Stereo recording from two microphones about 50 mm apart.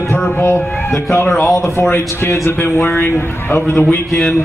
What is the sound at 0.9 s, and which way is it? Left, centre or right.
Speech, left.